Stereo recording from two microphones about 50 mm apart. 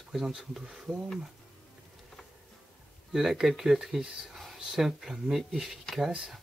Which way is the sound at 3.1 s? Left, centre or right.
Centre.